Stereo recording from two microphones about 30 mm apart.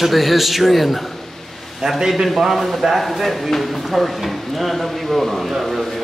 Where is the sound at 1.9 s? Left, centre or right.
Centre.